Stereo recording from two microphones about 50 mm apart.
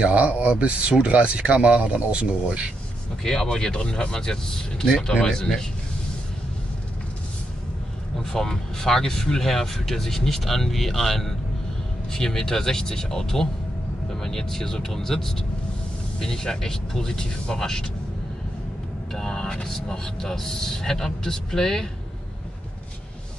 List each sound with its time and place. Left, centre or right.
0.0 s speech: right
3.3 s speech: centre
8.2 s speech: centre
19.1 s speech: centre